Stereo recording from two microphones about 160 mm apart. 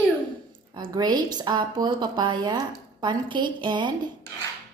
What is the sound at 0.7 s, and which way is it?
A woman's voice, 25° right (ahead or behind).